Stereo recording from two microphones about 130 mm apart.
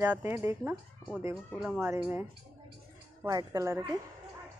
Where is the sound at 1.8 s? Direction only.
15° right (ahead or behind).